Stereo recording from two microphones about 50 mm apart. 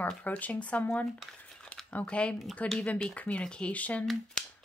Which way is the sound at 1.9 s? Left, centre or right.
Left.